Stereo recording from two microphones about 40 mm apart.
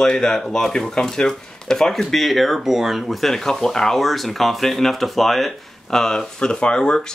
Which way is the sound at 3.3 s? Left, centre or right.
Centre.